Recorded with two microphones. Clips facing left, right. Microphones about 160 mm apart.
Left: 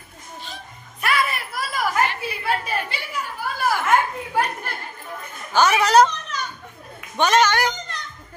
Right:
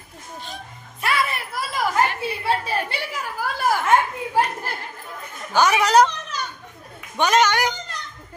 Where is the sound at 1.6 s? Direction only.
25° right (ahead or behind).